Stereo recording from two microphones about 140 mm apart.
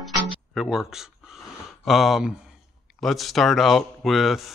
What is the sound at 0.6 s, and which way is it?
Speech, centre (ahead or behind).